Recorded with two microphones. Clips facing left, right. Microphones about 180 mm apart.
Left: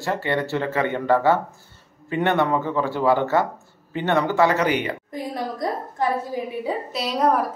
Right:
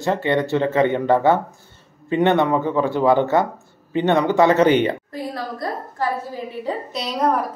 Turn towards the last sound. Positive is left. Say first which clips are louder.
# even
turn(degrees=0)  # may be behind; listen again after turning